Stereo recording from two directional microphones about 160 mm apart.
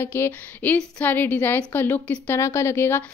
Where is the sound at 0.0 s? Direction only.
15° left (ahead or behind).